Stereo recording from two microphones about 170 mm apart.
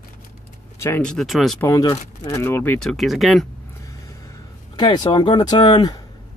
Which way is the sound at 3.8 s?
20° left (ahead or behind).